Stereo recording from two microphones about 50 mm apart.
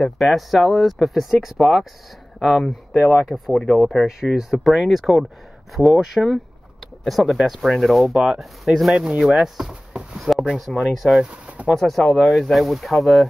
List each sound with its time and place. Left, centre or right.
0.0 s speech: centre
10.1 s drawer open or close: centre
10.6 s speech: centre
11.2 s speech: right
11.7 s speech: centre